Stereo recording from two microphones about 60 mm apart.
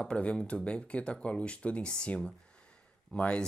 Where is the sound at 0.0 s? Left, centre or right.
Centre.